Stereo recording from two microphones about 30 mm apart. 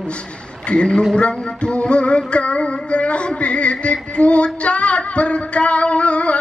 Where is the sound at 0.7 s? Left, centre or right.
Left.